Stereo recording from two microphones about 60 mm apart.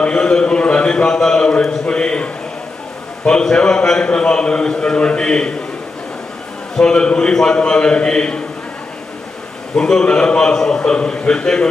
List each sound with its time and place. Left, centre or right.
0.0 s a sound: centre
3.3 s a man's voice: centre
6.8 s a man's voice: centre
9.8 s a man's voice: centre